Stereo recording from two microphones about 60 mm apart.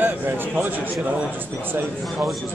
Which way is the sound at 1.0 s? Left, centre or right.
Centre.